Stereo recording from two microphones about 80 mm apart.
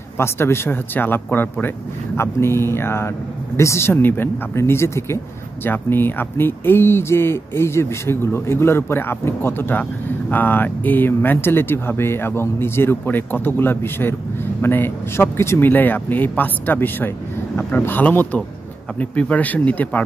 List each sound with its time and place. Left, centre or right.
0.2 s speech: left